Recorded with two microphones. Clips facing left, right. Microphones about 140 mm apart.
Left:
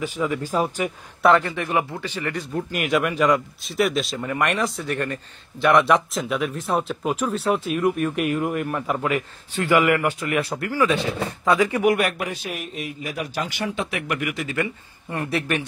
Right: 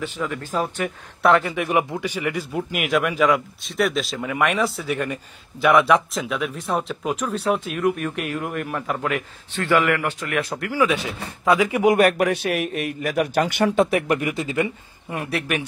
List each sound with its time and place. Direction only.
0.0 s a man's voice: 10° left (ahead or behind)
1.5 s a man's voice: 15° right (ahead or behind)
12.2 s a man's voice: 65° right (ahead or behind)
13.7 s speech: 40° right (ahead or behind)
15.0 s a man's voice: 5° right (ahead or behind)